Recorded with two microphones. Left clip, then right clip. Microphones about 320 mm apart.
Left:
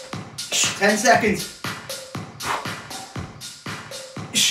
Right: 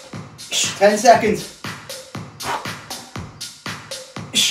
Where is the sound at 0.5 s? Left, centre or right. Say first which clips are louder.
Right 4 dB; centre.